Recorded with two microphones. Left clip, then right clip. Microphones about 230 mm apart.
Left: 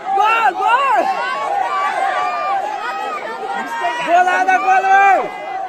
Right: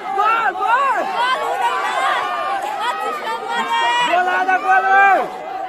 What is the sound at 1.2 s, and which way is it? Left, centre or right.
Run, right.